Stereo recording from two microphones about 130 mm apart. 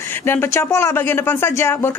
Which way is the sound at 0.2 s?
20° left (ahead or behind).